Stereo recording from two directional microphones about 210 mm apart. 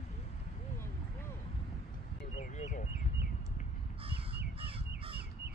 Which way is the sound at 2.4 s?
35° left (ahead or behind).